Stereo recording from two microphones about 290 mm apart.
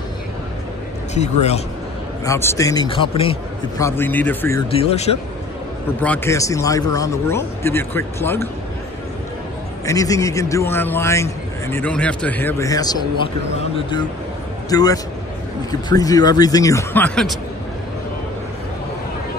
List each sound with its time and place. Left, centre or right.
1.1 s a man's voice: left
2.2 s a man's voice: centre
4.6 s a man's voice: left
5.9 s a man's voice: centre
9.8 s a man's voice: centre